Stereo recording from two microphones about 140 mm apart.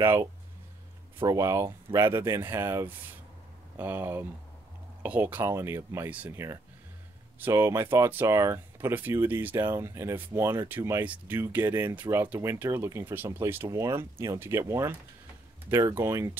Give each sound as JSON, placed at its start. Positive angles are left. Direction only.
{"t": 0.0, "sound": "speech", "side_deg": -15}